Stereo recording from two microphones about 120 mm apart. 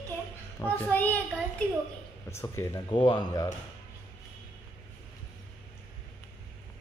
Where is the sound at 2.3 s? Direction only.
25° left (ahead or behind).